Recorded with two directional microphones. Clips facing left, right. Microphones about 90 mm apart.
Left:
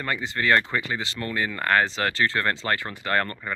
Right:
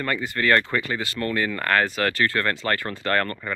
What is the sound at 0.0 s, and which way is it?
Speech, 20° left (ahead or behind).